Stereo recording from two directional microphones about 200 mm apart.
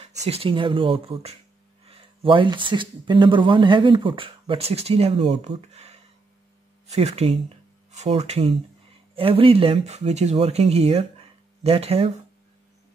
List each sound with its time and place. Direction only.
0.3 s speech: 25° right (ahead or behind)